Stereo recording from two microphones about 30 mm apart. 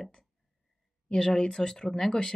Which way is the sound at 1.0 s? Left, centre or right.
Left.